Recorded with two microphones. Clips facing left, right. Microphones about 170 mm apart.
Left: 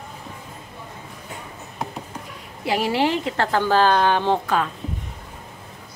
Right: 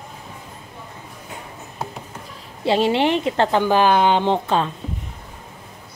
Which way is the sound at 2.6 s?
25° right (ahead or behind).